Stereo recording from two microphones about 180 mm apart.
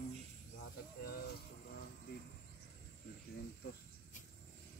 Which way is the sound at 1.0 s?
60° left (ahead or behind).